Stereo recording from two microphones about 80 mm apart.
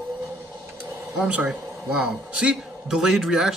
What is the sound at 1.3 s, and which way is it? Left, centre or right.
A man's voice, centre.